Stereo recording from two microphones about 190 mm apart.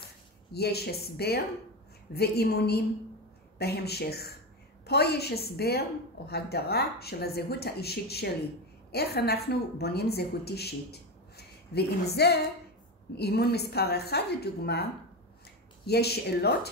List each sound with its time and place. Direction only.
0.5 s a woman's voice: 55° left (ahead or behind)